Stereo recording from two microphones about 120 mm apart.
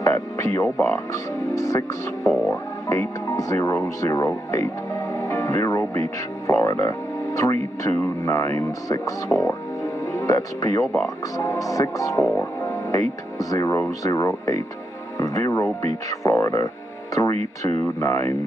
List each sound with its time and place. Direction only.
0.0 s music: 25° left (ahead or behind)
0.8 s speech: 30° left (ahead or behind)
10.1 s speech: 30° left (ahead or behind)